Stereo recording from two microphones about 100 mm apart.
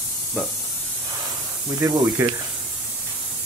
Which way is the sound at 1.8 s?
35° right (ahead or behind).